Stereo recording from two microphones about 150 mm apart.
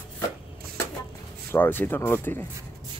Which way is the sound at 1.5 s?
15° left (ahead or behind).